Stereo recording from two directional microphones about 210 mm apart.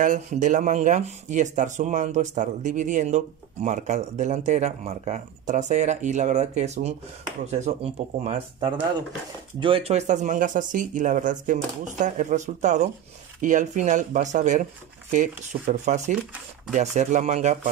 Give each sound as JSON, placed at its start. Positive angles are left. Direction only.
{"t": 0.0, "sound": "speech", "side_deg": -40}